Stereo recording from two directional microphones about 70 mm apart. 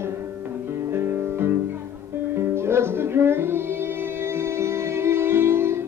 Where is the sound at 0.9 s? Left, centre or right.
Right.